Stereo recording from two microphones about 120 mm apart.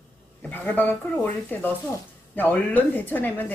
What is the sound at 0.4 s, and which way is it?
Speech, 15° left (ahead or behind).